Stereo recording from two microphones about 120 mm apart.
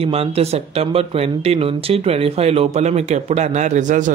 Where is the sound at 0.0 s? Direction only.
55° right (ahead or behind).